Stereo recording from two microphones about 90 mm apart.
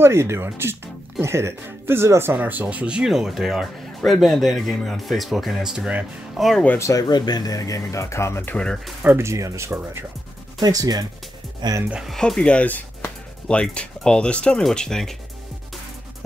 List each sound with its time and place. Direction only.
0.0 s speech: 30° right (ahead or behind); by 6.6 s centre (ahead or behind)
6.8 s speech: 40° left (ahead or behind)
7.1 s speech: 50° left (ahead or behind); by 8.5 s 30° left (ahead or behind)
9.0 s speech: 30° right (ahead or behind)
10.6 s speech: 45° right (ahead or behind)
11.6 s speech: 55° right (ahead or behind)
12.1 s speech: 5° left (ahead or behind)